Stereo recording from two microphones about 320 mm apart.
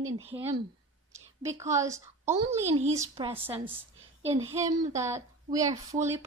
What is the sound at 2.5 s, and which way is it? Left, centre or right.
Speech, right.